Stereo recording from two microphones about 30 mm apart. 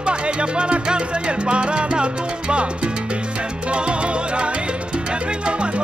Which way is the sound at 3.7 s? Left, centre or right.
Right.